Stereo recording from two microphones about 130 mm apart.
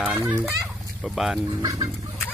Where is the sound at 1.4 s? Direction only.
30° right (ahead or behind).